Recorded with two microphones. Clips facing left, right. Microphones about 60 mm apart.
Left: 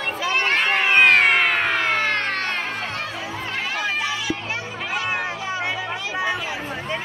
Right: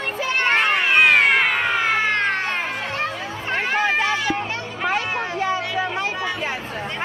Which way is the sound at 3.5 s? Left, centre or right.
Right.